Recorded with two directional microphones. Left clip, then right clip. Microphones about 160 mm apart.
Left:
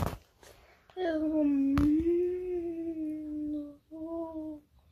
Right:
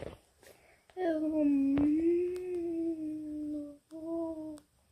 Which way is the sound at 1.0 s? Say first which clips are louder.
Left 1 dB; 30° right (ahead or behind).